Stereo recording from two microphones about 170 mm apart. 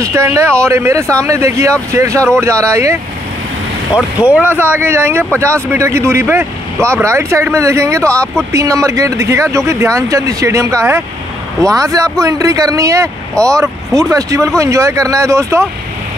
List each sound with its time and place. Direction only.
0.0 s speech: 15° right (ahead or behind)
8.0 s speech: 5° left (ahead or behind)
8.5 s speech: 20° right (ahead or behind)
13.4 s speech: 5° left (ahead or behind)
14.1 s speech: 20° right (ahead or behind)